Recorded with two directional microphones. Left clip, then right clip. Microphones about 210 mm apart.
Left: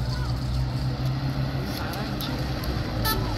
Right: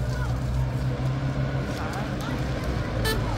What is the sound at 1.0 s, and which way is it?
Vehicle, 35° right (ahead or behind).